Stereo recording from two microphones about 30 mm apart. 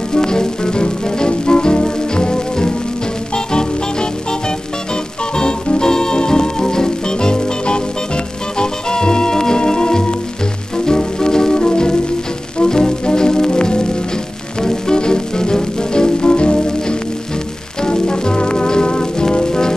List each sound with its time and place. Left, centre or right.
0.1 s music: left